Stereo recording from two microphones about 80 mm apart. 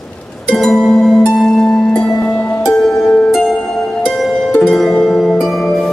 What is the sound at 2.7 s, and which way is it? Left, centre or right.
Music, centre.